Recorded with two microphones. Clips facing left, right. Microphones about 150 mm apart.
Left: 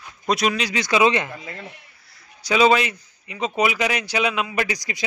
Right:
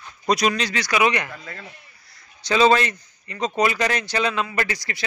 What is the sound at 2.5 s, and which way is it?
A man's voice, 10° left (ahead or behind).